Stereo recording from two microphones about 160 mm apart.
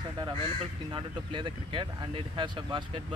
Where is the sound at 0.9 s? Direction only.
30° right (ahead or behind).